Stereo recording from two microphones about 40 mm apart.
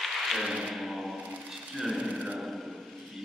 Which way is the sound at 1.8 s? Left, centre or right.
Centre.